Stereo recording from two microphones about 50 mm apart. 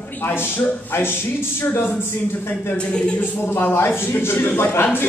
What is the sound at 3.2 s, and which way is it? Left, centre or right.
A man's voice, left.